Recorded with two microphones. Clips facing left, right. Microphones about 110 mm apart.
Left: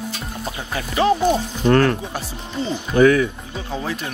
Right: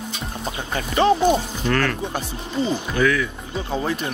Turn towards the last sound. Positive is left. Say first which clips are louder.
# right 2 dB
turn(degrees=0)  # may be behind; listen again after turning